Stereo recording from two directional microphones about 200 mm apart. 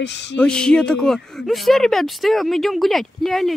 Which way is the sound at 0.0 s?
60° left (ahead or behind).